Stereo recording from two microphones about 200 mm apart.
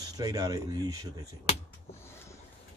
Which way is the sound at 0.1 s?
20° right (ahead or behind).